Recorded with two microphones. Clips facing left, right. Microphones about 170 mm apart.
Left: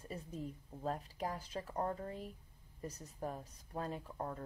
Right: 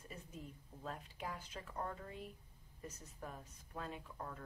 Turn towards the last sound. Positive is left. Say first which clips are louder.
# left 6 dB
turn(degrees=35)  # may be behind; listen again after turning